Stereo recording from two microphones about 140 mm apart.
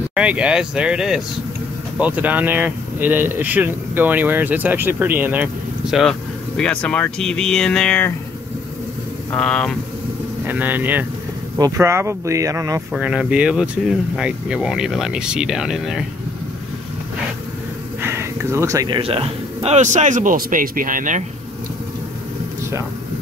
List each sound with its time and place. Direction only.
0.1 s speech: 10° right (ahead or behind)
9.3 s speech: 5° left (ahead or behind)
10.4 s speech: 15° right (ahead or behind)
11.5 s speech: 25° right (ahead or behind)
12.9 s speech: 5° right (ahead or behind)
18.0 s a sound: 20° right (ahead or behind)
18.9 s speech: 40° right (ahead or behind); by 21.2 s 70° right (ahead or behind)